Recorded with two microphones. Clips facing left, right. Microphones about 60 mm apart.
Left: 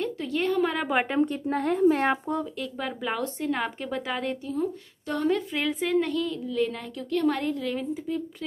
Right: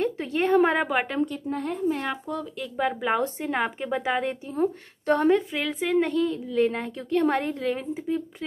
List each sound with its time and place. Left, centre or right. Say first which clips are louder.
0.0 s a sound: right 2 dB; right
0.8 s a woman's voice: left 1 dB; centre
1.5 s speech: left 5 dB; left
2.0 s speech: left 5 dB; left
2.8 s a woman's voice: right 6 dB; centre
4.5 s speech: right 3 dB; right
5.5 s a woman's voice: even; centre
5.9 s a woman's voice: right 2 dB; right